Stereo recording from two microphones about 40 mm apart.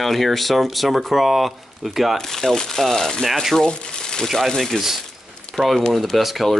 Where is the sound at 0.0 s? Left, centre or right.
Centre.